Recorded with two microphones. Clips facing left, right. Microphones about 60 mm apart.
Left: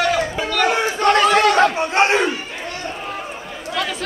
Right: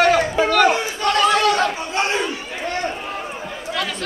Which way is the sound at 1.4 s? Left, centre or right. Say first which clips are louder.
Left 4 dB; left.